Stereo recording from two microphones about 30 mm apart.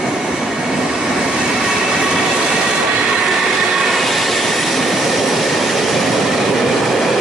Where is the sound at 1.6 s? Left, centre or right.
Centre.